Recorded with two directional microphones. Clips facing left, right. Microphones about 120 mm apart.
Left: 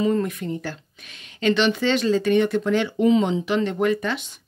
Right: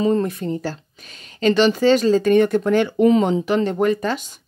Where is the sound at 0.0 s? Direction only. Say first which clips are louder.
Right 3 dB; 35° right (ahead or behind).